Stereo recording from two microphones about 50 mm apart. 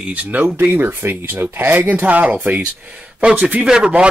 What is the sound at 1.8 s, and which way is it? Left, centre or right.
Speech, right.